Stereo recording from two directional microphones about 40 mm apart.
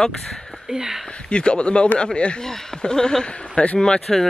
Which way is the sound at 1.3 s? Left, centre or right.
Left.